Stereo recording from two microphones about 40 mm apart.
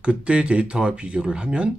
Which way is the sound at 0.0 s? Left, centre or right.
Right.